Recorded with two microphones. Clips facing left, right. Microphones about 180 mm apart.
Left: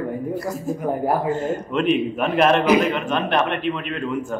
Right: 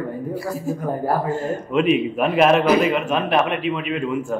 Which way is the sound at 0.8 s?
15° left (ahead or behind).